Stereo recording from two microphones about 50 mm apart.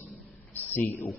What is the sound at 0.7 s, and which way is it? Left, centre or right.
Speech, left.